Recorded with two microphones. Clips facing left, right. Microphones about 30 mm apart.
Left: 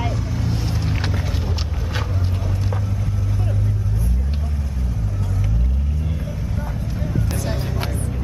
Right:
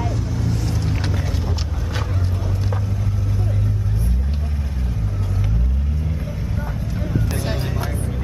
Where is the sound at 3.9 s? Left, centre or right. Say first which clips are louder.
Even; right.